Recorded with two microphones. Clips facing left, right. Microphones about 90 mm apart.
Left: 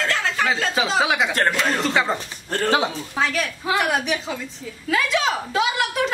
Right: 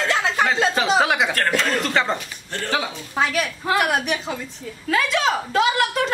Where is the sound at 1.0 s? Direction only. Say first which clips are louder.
Right 1 dB; centre (ahead or behind).